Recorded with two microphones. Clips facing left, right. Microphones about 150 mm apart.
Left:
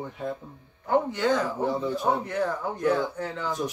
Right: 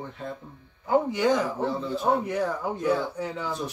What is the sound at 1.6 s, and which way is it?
Speech, 15° left (ahead or behind).